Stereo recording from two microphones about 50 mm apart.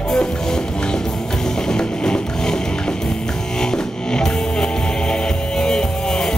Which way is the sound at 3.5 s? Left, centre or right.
Centre.